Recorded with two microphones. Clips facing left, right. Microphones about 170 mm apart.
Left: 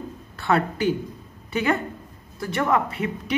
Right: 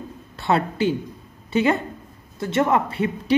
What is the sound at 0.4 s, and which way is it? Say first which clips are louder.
Speech: right 1 dB; 25° right (ahead or behind).